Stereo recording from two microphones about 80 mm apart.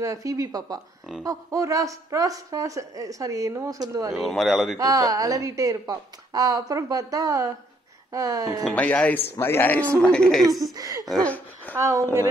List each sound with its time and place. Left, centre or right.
0.0 s a woman's voice: right
4.1 s speech: centre
4.7 s a woman's voice: right
8.7 s speech: centre
10.8 s a woman's voice: right
11.2 s speech: left
11.7 s a woman's voice: right